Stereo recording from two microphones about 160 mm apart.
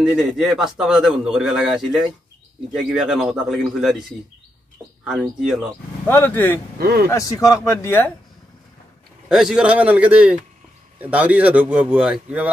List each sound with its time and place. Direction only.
0.0 s a man's voice: centre (ahead or behind)
5.0 s a man's voice: 5° right (ahead or behind)
6.0 s speech: 10° left (ahead or behind)
6.8 s speech: 70° right (ahead or behind)
7.1 s a man's voice: 20° left (ahead or behind)
9.3 s speech: 5° right (ahead or behind)